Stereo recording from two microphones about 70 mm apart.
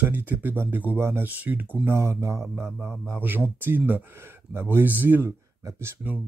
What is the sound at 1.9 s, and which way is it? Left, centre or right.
Speech, right.